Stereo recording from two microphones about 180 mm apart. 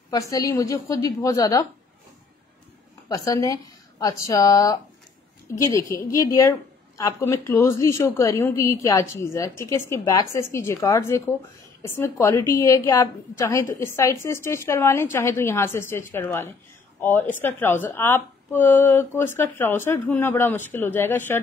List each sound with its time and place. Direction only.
0.1 s a woman's voice: 20° left (ahead or behind)
3.1 s a woman's voice: 20° left (ahead or behind)